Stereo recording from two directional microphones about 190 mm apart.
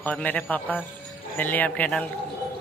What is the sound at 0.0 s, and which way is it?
A man's voice, 10° left (ahead or behind).